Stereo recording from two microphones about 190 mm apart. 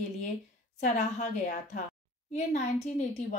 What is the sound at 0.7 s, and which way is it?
A woman's voice, 40° left (ahead or behind).